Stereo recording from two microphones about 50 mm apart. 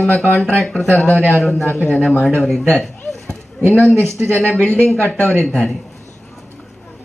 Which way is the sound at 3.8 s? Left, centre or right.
Right.